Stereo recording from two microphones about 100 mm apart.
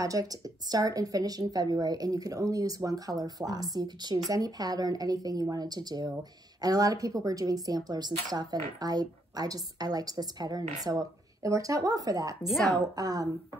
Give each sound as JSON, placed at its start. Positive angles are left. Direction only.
{"t": 0.0, "sound": "a woman's voice", "side_deg": -35}